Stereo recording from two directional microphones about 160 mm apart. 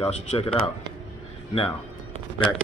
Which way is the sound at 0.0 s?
40° left (ahead or behind).